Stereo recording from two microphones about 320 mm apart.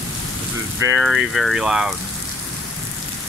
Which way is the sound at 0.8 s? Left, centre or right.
Centre.